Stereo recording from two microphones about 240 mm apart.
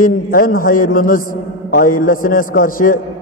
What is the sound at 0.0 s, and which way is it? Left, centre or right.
A man's voice, left.